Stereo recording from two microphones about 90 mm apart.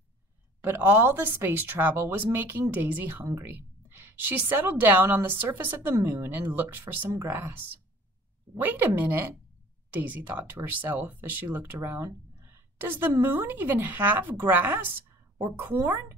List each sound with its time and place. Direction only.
0.6 s a woman's voice: 25° right (ahead or behind)